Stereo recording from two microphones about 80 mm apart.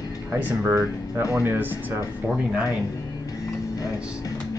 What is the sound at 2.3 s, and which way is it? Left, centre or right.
Speech, centre.